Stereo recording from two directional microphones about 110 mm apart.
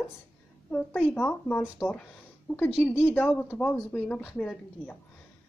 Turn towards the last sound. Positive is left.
turn(degrees=10)  # may be behind; listen again after turning